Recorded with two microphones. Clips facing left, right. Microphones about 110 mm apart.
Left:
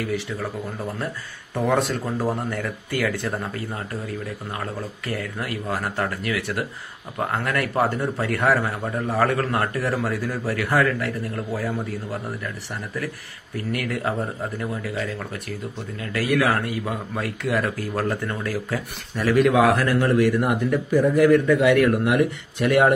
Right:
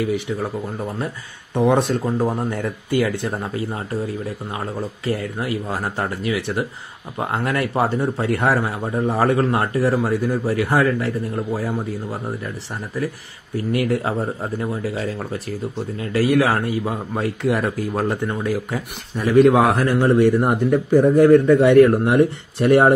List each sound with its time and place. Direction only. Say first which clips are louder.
0.0 s a man's voice: right 5 dB; 20° right (ahead or behind)
1.5 s a man's voice: right 4 dB; 20° right (ahead or behind)
13.6 s a man's voice: right 6 dB; 25° right (ahead or behind)